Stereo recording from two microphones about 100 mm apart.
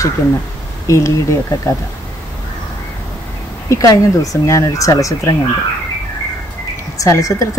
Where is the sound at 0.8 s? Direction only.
30° left (ahead or behind).